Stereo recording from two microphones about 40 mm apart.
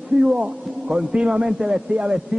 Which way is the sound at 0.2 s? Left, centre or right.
Centre.